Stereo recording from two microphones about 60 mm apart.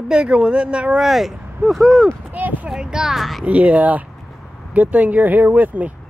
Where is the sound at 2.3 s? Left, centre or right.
Right.